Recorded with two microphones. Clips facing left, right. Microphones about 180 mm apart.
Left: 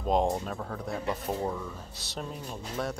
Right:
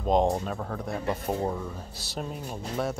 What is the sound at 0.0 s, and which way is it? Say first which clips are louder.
Speech: right 3 dB; centre (ahead or behind).